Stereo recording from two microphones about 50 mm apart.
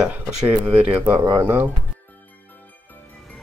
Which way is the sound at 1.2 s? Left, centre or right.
Right.